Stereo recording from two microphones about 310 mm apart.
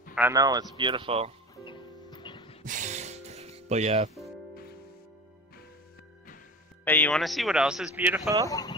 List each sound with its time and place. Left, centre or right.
0.1 s speech: centre
1.6 s music: centre
2.6 s music: right
6.8 s speech: centre
8.5 s speech: centre